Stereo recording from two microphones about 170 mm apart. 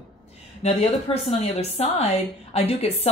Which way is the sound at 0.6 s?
40° left (ahead or behind).